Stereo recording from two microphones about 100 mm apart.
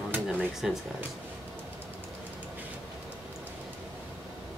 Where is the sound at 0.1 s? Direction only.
20° right (ahead or behind).